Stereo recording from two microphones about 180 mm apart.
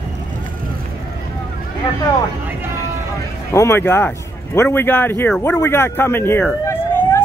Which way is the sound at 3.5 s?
15° left (ahead or behind).